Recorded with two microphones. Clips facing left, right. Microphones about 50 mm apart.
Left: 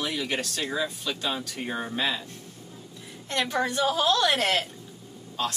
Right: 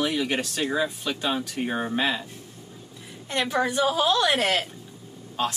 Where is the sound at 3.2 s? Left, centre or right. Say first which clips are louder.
Right 2 dB; centre.